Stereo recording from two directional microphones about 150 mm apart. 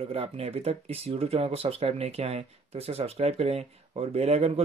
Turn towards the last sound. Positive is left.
turn(degrees=-45)  # may be behind; listen again after turning